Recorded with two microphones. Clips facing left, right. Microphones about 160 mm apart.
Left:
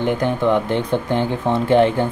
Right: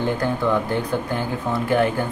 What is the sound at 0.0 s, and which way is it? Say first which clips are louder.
Speech: left 3 dB; 20° left (ahead or behind).